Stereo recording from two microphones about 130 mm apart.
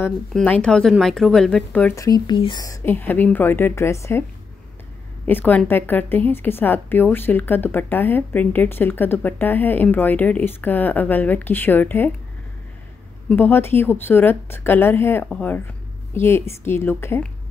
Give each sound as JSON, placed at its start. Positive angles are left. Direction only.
{"t": 0.5, "sound": "speech", "side_deg": 5}
{"t": 2.0, "sound": "speech", "side_deg": 30}
{"t": 2.6, "sound": "speech", "side_deg": 20}
{"t": 5.2, "sound": "a woman's voice", "side_deg": 15}
{"t": 13.3, "sound": "speech", "side_deg": 15}
{"t": 15.2, "sound": "speech", "side_deg": 5}
{"t": 16.2, "sound": "a woman's voice", "side_deg": 20}